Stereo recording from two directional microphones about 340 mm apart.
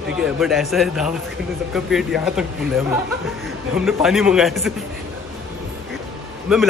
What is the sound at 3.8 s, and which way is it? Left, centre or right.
Speech, centre.